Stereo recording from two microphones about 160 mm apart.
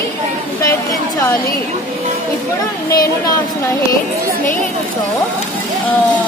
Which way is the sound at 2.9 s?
25° left (ahead or behind).